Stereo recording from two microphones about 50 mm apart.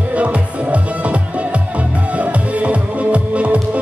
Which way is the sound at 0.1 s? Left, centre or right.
Right.